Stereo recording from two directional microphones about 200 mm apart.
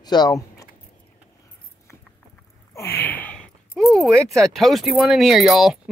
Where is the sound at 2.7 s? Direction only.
10° left (ahead or behind).